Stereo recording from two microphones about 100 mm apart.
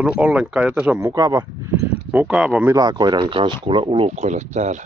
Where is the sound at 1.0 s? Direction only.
35° right (ahead or behind).